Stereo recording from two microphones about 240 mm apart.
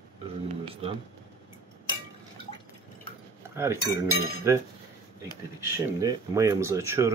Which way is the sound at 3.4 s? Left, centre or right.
Centre.